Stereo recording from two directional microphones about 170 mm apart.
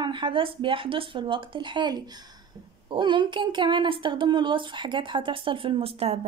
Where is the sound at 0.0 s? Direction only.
30° right (ahead or behind).